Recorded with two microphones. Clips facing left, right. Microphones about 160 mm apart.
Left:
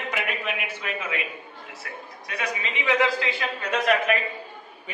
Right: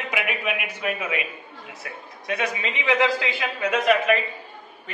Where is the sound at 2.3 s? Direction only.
20° right (ahead or behind).